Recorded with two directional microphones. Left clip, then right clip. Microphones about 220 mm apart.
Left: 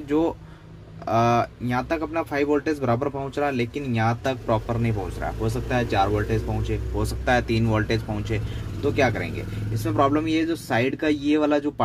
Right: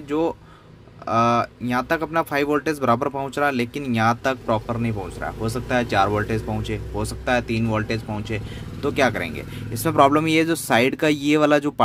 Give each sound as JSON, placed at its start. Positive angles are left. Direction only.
{"t": 0.1, "sound": "speech", "side_deg": -10}
{"t": 7.0, "sound": "speech", "side_deg": -10}
{"t": 8.8, "sound": "speech", "side_deg": -20}